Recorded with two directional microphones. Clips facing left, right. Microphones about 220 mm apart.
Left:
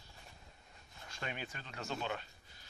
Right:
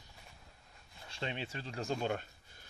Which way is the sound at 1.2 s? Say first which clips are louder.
Right 4 dB; 25° right (ahead or behind).